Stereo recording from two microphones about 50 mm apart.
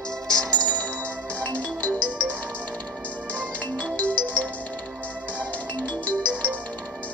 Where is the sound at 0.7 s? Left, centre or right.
Left.